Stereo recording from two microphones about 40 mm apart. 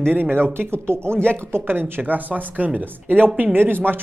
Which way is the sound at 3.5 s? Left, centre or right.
Right.